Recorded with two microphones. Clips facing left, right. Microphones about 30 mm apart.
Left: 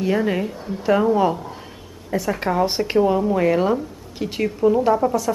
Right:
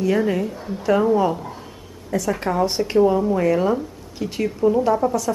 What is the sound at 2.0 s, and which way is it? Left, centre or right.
A woman's voice, left.